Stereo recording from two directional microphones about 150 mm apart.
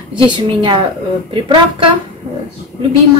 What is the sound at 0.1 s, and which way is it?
A woman's voice, 30° right (ahead or behind).